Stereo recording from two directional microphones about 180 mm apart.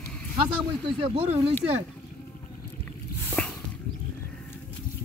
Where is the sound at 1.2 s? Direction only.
35° right (ahead or behind).